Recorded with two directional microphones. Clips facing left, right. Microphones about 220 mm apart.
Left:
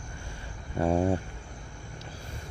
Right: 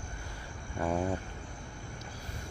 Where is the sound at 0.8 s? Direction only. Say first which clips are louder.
Left 6 dB; 30° left (ahead or behind).